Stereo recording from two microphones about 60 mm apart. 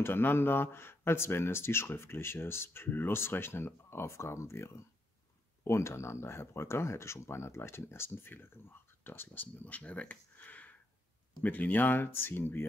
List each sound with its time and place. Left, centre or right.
0.0 s speech: left